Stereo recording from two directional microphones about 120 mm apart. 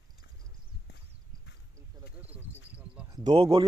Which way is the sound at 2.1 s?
15° right (ahead or behind).